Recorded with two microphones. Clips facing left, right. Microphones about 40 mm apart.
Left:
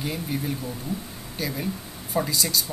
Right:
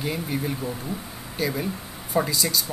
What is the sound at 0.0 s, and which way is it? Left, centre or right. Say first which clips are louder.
Speech: right 2 dB; centre.